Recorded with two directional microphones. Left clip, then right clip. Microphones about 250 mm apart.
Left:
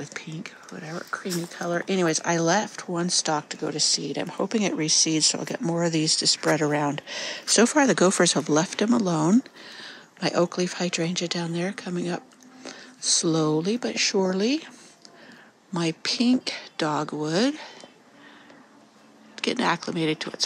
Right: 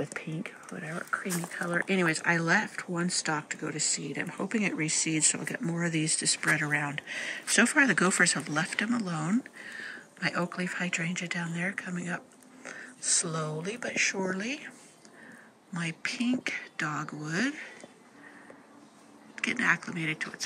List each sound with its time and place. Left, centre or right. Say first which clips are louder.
0.0 s speech: even; centre
15.7 s speech: left 8 dB; centre
19.3 s speech: left 3 dB; centre